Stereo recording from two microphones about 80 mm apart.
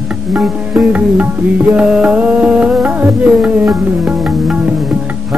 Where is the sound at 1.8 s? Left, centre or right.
Centre.